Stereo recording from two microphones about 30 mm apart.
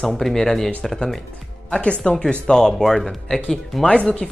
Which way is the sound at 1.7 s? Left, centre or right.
Left.